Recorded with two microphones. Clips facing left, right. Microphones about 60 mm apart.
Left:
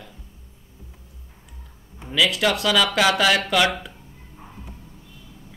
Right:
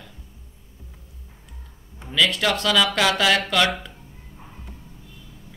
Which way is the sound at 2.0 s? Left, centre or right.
Centre.